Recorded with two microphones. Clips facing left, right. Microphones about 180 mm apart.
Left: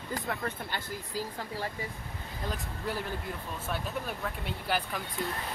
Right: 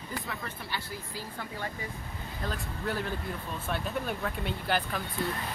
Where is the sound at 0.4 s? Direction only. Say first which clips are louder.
Left 3 dB; 50° left (ahead or behind).